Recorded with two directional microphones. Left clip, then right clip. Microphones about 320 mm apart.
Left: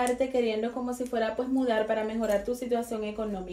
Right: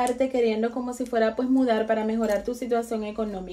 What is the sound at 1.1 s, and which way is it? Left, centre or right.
A woman's voice, right.